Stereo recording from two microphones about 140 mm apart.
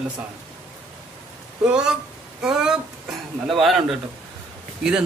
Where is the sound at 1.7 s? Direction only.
5° right (ahead or behind).